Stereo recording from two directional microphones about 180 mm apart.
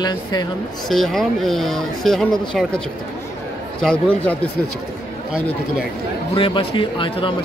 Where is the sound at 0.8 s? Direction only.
Centre (ahead or behind).